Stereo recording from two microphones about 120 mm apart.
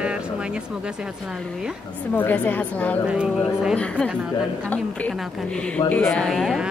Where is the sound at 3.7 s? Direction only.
5° left (ahead or behind).